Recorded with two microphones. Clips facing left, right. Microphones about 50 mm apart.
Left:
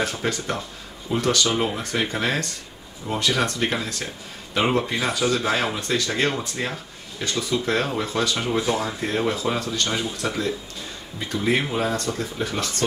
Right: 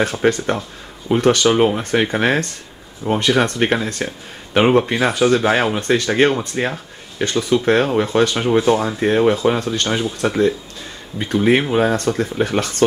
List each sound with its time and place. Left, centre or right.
0.0 s speech: right